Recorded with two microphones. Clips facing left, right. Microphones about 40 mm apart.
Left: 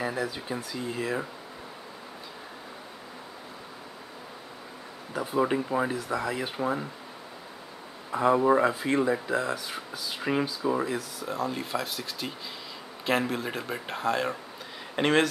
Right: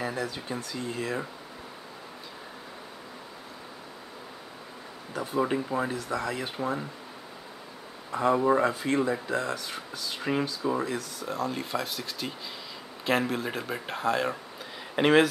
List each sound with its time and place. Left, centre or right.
0.0 s speech: centre
5.1 s speech: centre
8.1 s speech: centre